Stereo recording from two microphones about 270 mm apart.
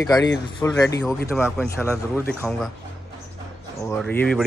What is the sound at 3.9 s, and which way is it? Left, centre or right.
Speech, centre.